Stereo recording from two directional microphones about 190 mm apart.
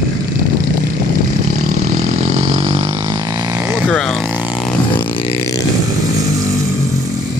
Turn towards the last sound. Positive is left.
turn(degrees=30)  # may be behind; listen again after turning